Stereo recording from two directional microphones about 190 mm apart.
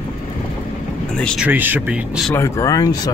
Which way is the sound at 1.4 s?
10° right (ahead or behind).